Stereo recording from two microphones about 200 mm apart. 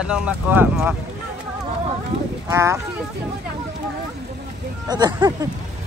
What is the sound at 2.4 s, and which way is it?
Speech, 15° right (ahead or behind).